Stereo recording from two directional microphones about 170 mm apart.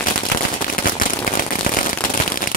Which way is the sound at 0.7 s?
55° left (ahead or behind).